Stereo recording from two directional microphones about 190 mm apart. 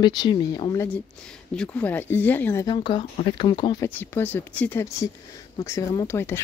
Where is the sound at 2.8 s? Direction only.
25° left (ahead or behind).